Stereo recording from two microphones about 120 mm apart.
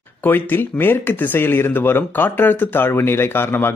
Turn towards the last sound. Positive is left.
turn(degrees=20)  # may be behind; listen again after turning